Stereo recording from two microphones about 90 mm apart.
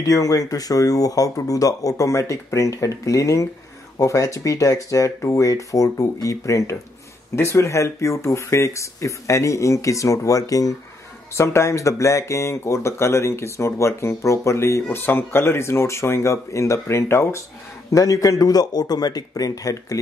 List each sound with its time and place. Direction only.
0.0 s speech: 40° left (ahead or behind)
17.9 s speech: 40° left (ahead or behind)